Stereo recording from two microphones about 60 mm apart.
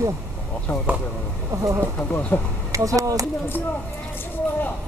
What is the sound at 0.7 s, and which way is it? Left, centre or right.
Speech, left.